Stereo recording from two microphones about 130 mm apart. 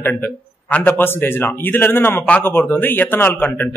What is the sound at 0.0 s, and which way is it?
Speech, 15° left (ahead or behind).